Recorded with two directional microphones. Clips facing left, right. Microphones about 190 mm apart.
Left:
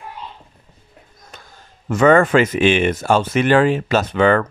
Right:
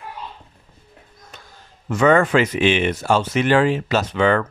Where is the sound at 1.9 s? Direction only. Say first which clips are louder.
Left 3 dB; 50° left (ahead or behind).